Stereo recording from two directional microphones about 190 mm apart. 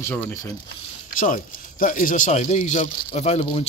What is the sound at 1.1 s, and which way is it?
Speech, 45° left (ahead or behind).